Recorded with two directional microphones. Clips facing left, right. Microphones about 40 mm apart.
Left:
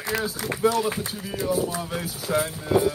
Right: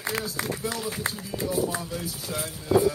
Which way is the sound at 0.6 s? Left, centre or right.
Left.